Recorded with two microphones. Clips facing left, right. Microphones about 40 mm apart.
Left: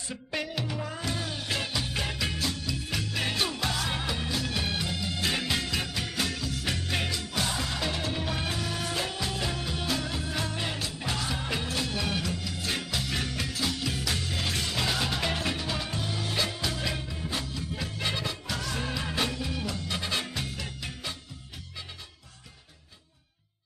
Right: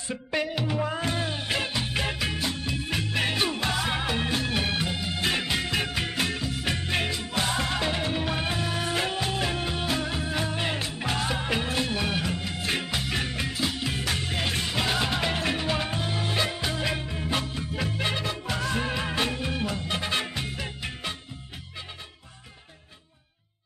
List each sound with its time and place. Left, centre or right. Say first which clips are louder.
0.1 s music: right 5 dB; right
4.1 s music: right 4 dB; right
7.4 s music: right 6 dB; right